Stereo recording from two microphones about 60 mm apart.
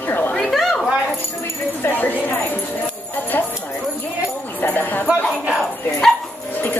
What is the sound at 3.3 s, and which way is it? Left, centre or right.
Clip-clop, left.